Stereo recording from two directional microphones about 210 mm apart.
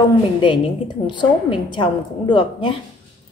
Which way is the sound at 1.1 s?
20° left (ahead or behind).